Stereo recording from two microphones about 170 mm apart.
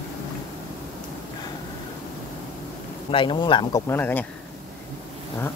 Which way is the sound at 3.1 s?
30° left (ahead or behind).